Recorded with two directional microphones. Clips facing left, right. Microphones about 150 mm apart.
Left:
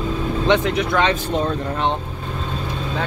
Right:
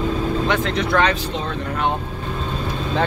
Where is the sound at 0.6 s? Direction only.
10° left (ahead or behind).